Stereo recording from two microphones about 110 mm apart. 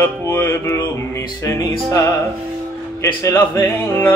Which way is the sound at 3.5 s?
30° left (ahead or behind).